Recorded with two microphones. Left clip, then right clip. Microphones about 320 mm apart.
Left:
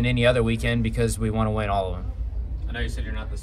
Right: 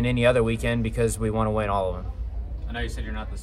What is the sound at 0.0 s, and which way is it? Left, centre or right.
Speech, centre.